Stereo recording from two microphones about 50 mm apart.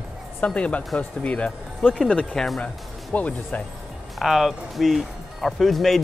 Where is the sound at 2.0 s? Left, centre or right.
Centre.